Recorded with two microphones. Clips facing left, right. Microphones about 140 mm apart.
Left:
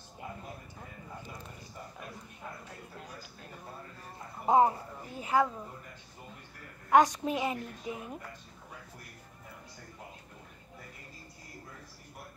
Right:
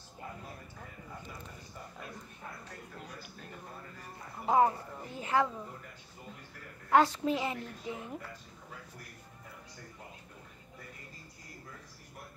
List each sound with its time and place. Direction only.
4.5 s a woman's voice: 20° left (ahead or behind)
6.9 s a woman's voice: 15° left (ahead or behind)